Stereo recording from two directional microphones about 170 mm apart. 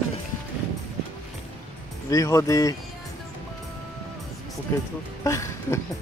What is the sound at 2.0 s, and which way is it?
Speech, 20° left (ahead or behind).